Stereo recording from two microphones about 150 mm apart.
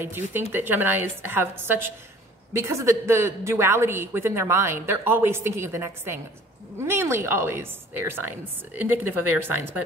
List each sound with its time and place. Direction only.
0.0 s a woman's voice: 15° right (ahead or behind)